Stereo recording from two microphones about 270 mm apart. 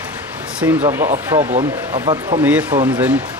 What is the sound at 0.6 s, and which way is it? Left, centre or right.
Speech, centre.